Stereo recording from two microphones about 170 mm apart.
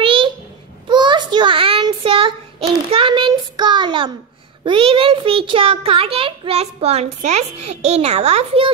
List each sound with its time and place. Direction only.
0.0 s babbling: 30° right (ahead or behind)
0.8 s child singing: 25° right (ahead or behind)
4.6 s a child's voice: 30° right (ahead or behind)